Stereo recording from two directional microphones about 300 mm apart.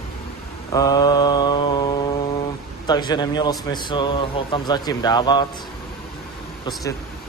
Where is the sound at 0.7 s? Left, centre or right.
Centre.